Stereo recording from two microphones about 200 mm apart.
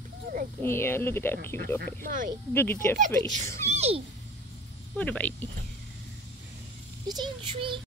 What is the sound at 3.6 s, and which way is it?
Speech, 30° right (ahead or behind).